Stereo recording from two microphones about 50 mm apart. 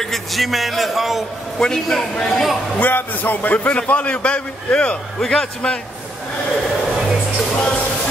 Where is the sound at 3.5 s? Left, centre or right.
Left.